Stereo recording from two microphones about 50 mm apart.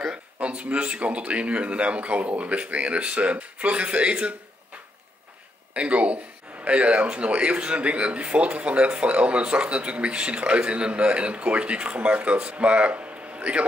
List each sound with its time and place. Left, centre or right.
0.0 s speech: centre
5.8 s speech: right